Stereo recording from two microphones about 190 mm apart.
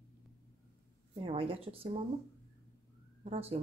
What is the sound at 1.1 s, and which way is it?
Speech, 30° right (ahead or behind).